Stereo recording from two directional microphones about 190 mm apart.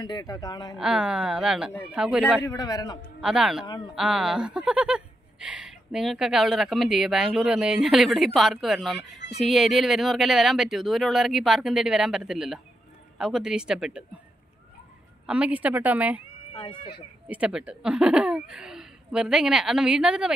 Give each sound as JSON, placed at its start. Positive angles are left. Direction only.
{"t": 0.0, "sound": "speech", "side_deg": 20}
{"t": 0.7, "sound": "speech", "side_deg": -5}
{"t": 2.4, "sound": "speech", "side_deg": 20}
{"t": 3.2, "sound": "speech", "side_deg": -5}
{"t": 3.6, "sound": "speech", "side_deg": 25}
{"t": 3.9, "sound": "speech", "side_deg": 0}
{"t": 15.2, "sound": "a woman's voice", "side_deg": -5}
{"t": 16.5, "sound": "speech", "side_deg": 25}
{"t": 17.3, "sound": "speech", "side_deg": -5}